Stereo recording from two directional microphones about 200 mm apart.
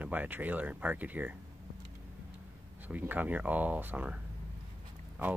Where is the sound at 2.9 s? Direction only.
10° right (ahead or behind).